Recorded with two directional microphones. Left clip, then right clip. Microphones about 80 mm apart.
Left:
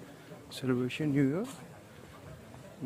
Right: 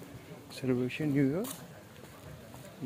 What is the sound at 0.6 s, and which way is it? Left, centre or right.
Speech, left.